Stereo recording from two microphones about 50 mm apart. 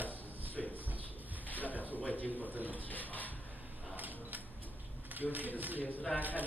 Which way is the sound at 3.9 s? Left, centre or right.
Right.